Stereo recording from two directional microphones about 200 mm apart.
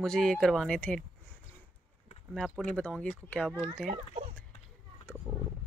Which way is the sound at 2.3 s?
Centre (ahead or behind).